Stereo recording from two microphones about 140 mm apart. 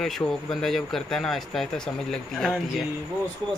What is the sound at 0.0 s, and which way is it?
Speech, 5° left (ahead or behind).